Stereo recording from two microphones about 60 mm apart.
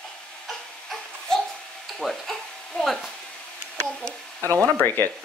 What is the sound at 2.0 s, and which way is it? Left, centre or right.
Speech, centre.